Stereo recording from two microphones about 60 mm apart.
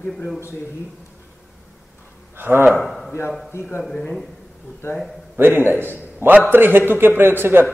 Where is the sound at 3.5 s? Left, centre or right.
Left.